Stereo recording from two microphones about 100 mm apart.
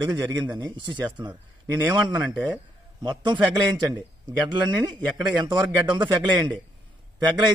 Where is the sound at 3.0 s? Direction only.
50° right (ahead or behind).